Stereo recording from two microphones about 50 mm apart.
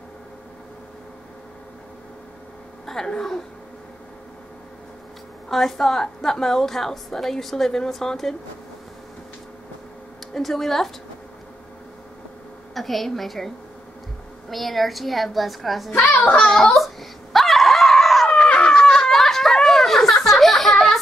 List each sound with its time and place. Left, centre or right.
2.9 s a woman's voice: centre
5.5 s a woman's voice: centre
10.3 s a woman's voice: centre
12.7 s a woman's voice: centre
14.5 s a woman's voice: centre
15.9 s a child's voice: left
16.7 s dog: centre
18.3 s a sound: left; by 20.8 s centre